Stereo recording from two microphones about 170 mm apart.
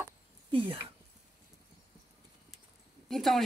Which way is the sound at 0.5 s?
30° right (ahead or behind).